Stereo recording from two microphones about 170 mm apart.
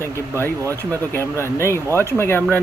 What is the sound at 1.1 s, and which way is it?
Speech, 15° left (ahead or behind).